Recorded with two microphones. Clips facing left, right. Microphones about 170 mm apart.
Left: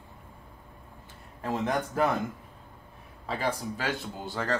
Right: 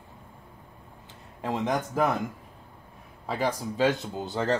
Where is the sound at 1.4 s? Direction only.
20° right (ahead or behind).